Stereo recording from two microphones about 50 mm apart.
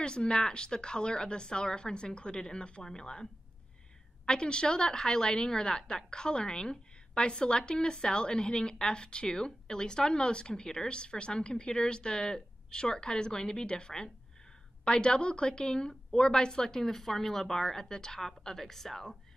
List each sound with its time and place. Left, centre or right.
0.0 s a woman's voice: centre
4.3 s a woman's voice: centre